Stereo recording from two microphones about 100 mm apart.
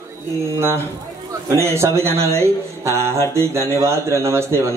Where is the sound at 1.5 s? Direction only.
25° right (ahead or behind).